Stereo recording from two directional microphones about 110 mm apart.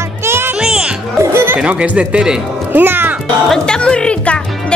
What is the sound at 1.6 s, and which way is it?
Speech, 10° right (ahead or behind).